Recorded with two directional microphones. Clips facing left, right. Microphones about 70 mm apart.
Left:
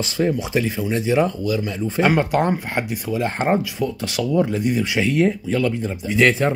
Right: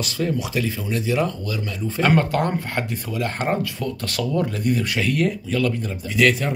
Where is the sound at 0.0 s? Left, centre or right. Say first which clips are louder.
Left 3 dB; left.